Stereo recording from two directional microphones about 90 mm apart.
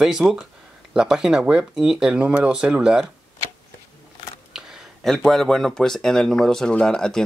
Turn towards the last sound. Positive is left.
turn(degrees=5)  # may be behind; listen again after turning